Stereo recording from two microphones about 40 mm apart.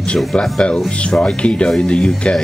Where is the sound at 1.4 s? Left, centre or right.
Left.